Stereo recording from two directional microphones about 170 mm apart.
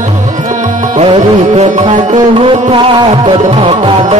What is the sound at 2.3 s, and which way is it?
Music, 30° right (ahead or behind).